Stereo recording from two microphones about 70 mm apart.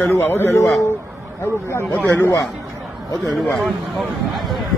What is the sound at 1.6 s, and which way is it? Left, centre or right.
Speech, left.